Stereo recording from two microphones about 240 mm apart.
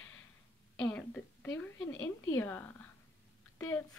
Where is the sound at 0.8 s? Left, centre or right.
Centre.